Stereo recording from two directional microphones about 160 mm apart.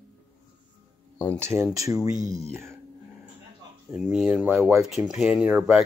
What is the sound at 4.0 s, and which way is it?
Speech, 5° right (ahead or behind).